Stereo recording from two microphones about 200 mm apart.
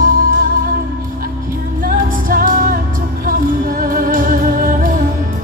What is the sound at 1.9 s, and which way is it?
Music, 45° right (ahead or behind).